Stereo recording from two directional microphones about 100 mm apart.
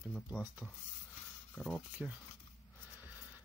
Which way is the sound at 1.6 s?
Centre (ahead or behind).